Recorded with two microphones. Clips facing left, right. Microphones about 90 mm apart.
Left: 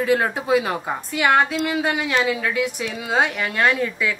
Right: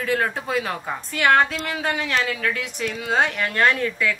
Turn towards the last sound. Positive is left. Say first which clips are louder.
# even
turn(degrees=10)  # may be behind; listen again after turning